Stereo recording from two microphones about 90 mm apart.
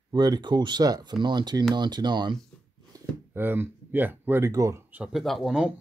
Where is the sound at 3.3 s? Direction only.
25° right (ahead or behind).